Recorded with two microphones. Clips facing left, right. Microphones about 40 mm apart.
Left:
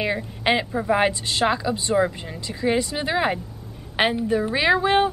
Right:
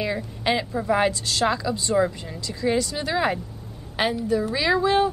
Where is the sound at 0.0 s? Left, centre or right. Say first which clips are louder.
Left 2 dB; left.